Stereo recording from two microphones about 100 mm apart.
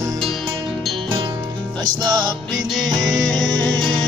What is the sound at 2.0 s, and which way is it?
Music, 45° right (ahead or behind).